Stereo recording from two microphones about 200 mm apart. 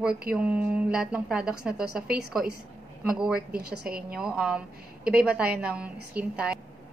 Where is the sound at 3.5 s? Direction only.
55° right (ahead or behind).